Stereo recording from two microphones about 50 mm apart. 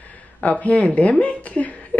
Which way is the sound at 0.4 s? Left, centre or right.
Left.